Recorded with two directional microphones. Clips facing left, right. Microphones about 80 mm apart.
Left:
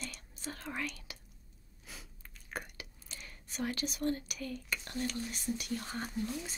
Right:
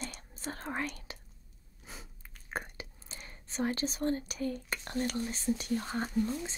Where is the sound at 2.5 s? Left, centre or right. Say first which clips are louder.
Right 4 dB; right.